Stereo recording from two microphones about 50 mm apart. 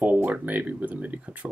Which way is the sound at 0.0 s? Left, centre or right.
Right.